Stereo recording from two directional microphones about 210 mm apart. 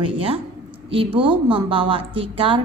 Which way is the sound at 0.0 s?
25° right (ahead or behind).